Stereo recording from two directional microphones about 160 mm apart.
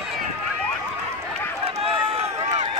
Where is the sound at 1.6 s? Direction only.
40° right (ahead or behind).